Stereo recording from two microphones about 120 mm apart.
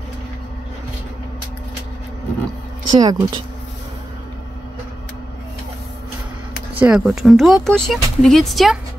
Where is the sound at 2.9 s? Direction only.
35° right (ahead or behind).